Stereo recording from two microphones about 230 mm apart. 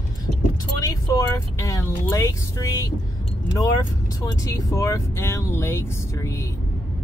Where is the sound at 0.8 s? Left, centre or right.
Centre.